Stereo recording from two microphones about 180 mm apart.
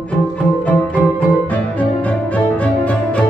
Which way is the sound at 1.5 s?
10° left (ahead or behind).